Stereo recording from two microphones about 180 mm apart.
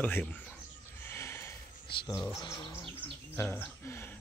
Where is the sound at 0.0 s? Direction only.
10° left (ahead or behind).